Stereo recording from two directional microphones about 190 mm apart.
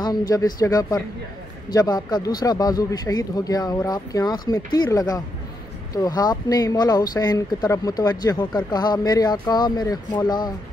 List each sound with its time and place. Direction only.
0.3 s speech: 20° left (ahead or behind)